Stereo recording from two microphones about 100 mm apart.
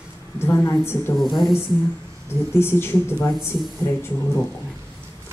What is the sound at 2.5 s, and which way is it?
Speech, 25° left (ahead or behind).